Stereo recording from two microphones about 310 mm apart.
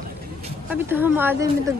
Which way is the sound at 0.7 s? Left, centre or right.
Centre.